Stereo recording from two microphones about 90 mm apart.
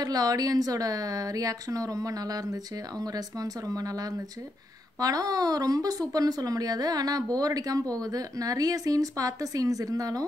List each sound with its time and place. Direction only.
0.0 s speech: 45° right (ahead or behind)